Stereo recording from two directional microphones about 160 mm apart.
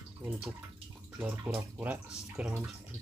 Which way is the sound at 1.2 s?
10° right (ahead or behind).